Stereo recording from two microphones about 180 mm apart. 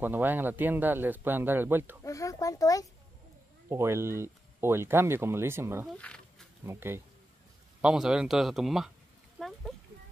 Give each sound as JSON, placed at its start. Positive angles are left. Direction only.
{"t": 0.0, "sound": "speech", "side_deg": -10}
{"t": 2.0, "sound": "a child's voice", "side_deg": 20}
{"t": 3.6, "sound": "speech", "side_deg": -15}
{"t": 5.9, "sound": "insect", "side_deg": 5}
{"t": 6.6, "sound": "speech", "side_deg": -15}
{"t": 7.8, "sound": "speech", "side_deg": -5}
{"t": 9.4, "sound": "a sound", "side_deg": 0}